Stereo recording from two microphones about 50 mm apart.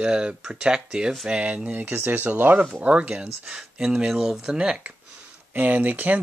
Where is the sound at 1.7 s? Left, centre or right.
Right; by 4.5 s centre.